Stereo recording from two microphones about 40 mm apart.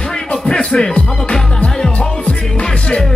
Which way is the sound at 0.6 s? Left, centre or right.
Centre.